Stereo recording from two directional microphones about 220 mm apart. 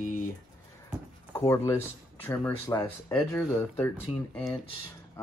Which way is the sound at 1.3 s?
10° left (ahead or behind).